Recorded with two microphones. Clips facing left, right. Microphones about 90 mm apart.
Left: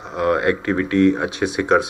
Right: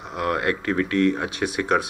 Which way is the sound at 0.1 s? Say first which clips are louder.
Left 5 dB; 25° left (ahead or behind).